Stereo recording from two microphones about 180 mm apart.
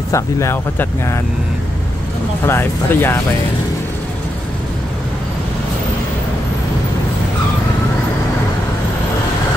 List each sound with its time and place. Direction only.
0.1 s speech: 15° left (ahead or behind)
2.4 s speech: 15° left (ahead or behind)